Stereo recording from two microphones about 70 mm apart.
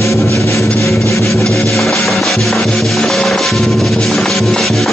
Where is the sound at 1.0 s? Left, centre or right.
Left.